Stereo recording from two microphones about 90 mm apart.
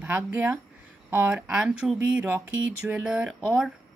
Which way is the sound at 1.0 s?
10° right (ahead or behind).